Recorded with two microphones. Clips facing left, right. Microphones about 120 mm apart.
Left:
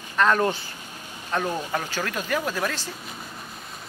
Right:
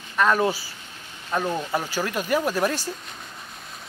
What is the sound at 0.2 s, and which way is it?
Speech, 5° right (ahead or behind).